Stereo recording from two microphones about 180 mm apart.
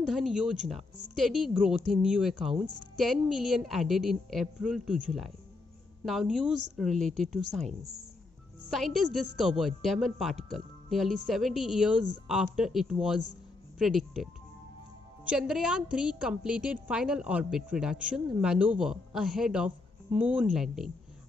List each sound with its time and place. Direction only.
0.0 s a woman's voice: centre (ahead or behind)